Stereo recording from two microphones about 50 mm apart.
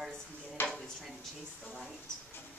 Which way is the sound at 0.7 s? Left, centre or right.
Centre.